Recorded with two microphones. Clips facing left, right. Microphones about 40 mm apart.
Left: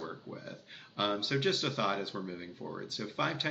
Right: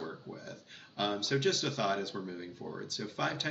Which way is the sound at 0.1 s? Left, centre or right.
Centre.